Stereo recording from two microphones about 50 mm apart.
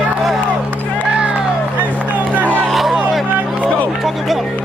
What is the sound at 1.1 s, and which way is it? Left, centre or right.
Music, right.